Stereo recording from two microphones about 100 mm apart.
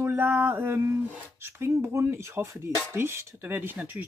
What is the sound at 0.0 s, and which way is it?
Mantra, 20° right (ahead or behind).